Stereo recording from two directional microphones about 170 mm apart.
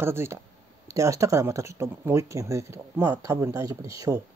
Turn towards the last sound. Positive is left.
turn(degrees=-20)  # may be behind; listen again after turning